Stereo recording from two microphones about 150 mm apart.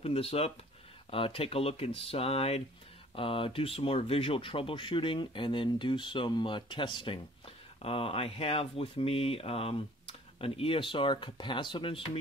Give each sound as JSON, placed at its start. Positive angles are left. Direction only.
{"t": 0.0, "sound": "speech", "side_deg": 40}